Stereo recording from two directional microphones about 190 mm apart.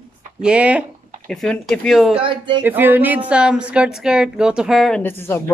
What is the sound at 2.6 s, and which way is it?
A woman's voice, 10° right (ahead or behind).